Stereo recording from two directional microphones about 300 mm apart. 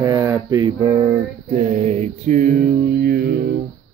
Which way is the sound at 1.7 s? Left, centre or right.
Right.